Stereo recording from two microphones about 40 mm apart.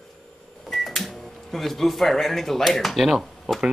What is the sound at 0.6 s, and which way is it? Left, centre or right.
Speech, centre.